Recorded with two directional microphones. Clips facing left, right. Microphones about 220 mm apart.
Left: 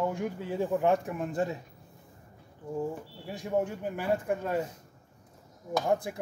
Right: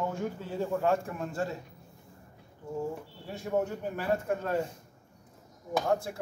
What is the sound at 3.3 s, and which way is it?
A man's voice, 15° left (ahead or behind).